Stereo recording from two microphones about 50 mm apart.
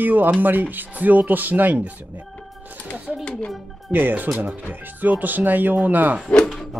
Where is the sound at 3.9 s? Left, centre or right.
Right.